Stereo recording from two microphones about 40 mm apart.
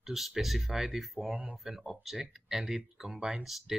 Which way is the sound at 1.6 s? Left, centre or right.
Centre.